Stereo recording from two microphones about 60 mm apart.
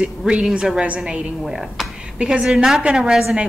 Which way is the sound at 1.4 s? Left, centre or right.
Centre.